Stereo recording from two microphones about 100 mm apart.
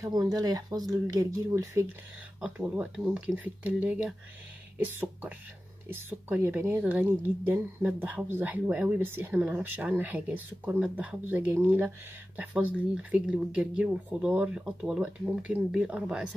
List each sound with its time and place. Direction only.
0.0 s speech: 40° right (ahead or behind)
2.4 s a woman's voice: 15° right (ahead or behind)
8.9 s speech: 20° right (ahead or behind)